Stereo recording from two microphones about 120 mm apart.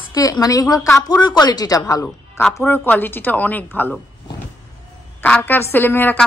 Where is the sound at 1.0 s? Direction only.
35° left (ahead or behind).